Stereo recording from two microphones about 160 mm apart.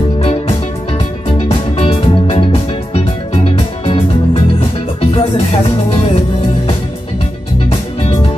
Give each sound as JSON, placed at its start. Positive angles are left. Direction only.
{"t": 0.2, "sound": "music", "side_deg": 40}
{"t": 1.8, "sound": "music", "side_deg": 35}